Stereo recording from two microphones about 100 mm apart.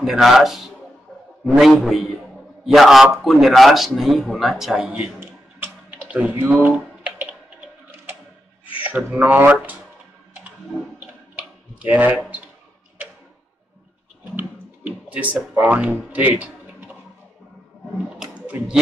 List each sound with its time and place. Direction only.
0.0 s a man's voice: 5° right (ahead or behind)
5.2 s a sound: 20° right (ahead or behind)
6.0 s typing: 15° right (ahead or behind)
8.7 s speech: 15° right (ahead or behind)
11.0 s tick-tock: 15° right (ahead or behind)
14.3 s music: 20° right (ahead or behind)
17.9 s a sound: 5° right (ahead or behind)